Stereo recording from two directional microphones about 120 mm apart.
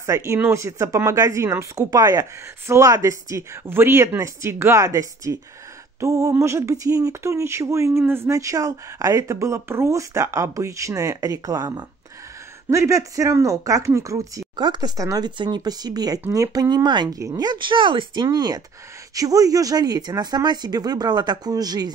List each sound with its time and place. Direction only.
0.0 s speech: 25° right (ahead or behind)
5.9 s a sound: 25° right (ahead or behind)
6.3 s speech: 25° right (ahead or behind)
14.6 s speech: 35° right (ahead or behind)